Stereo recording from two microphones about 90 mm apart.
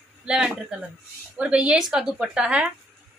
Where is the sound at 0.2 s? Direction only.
10° right (ahead or behind).